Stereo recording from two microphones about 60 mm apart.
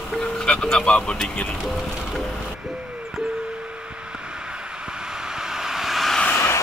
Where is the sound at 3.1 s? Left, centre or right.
Centre.